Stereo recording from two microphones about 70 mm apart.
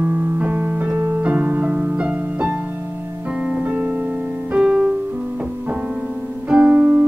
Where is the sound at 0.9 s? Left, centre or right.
Right.